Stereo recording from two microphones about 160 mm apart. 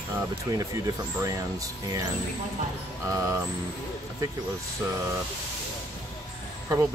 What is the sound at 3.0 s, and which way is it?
Speech, 15° right (ahead or behind).